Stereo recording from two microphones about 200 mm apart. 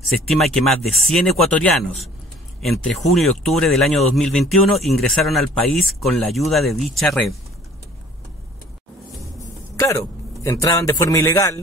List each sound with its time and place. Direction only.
0.0 s speech: centre (ahead or behind)
9.8 s a man's voice: 15° left (ahead or behind)